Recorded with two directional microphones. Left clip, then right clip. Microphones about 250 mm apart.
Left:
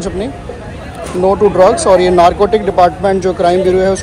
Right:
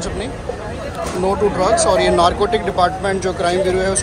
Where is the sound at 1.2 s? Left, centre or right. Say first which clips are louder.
Left 9 dB; centre.